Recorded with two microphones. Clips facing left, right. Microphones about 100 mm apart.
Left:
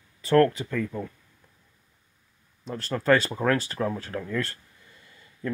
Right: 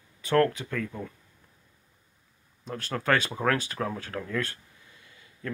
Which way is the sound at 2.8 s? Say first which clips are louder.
Left 4 dB; centre (ahead or behind).